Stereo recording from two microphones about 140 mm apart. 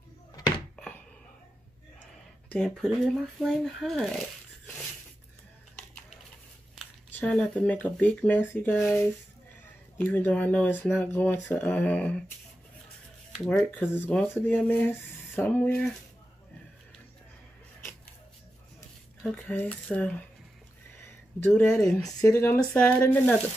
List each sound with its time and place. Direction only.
0.7 s a sound: 5° left (ahead or behind)
2.5 s speech: 5° left (ahead or behind)
7.1 s speech: 10° left (ahead or behind)
13.3 s speech: 5° left (ahead or behind)
19.3 s speech: 10° left (ahead or behind)
21.4 s speech: 15° left (ahead or behind)